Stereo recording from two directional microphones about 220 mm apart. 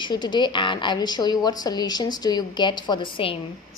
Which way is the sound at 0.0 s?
20° left (ahead or behind).